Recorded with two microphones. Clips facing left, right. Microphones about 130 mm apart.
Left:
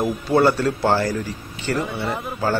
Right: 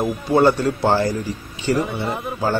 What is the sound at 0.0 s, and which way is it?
A man's voice, 15° right (ahead or behind).